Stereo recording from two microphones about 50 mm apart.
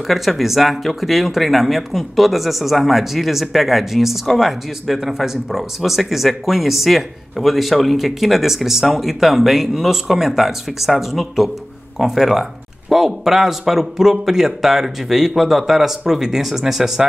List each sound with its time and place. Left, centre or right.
0.0 s speech: centre